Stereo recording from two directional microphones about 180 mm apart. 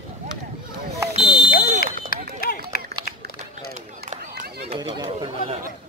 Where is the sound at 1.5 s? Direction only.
55° left (ahead or behind).